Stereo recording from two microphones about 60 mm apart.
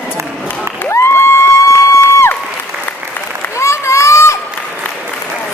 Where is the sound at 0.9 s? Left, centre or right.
Left.